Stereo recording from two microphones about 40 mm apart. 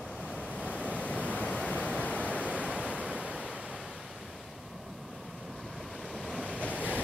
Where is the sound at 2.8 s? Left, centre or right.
Right.